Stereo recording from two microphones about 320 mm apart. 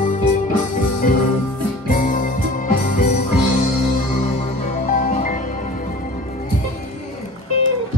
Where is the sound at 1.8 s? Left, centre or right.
Left.